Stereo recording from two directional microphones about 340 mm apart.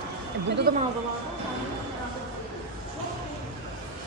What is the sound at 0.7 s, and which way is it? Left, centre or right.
Speech, right.